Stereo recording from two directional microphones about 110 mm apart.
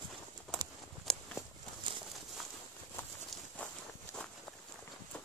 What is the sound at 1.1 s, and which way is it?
Walk, 5° left (ahead or behind).